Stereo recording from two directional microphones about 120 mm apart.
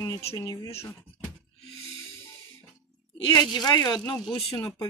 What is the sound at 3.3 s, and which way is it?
Speech, 35° left (ahead or behind).